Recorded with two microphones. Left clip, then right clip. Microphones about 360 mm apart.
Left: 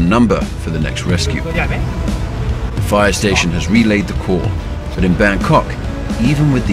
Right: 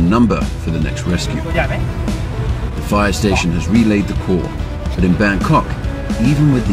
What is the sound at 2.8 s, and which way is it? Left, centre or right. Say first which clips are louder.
Speech: left 3 dB; left.